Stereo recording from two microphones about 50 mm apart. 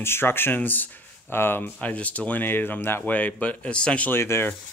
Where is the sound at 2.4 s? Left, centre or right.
Left.